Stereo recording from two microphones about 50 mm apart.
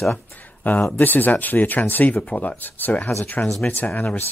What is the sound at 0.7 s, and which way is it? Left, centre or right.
Speech, left.